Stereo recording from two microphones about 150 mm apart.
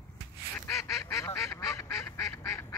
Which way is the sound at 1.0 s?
20° left (ahead or behind).